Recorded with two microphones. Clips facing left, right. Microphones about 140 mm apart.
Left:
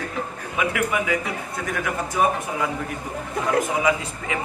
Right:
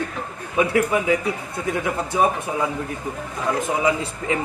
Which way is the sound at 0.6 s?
30° right (ahead or behind).